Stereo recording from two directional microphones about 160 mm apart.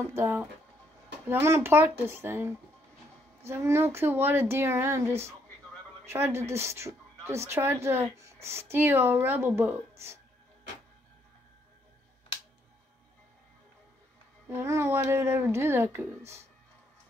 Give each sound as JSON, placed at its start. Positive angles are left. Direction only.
{"t": 0.0, "sound": "speech", "side_deg": -15}
{"t": 14.5, "sound": "speech", "side_deg": -15}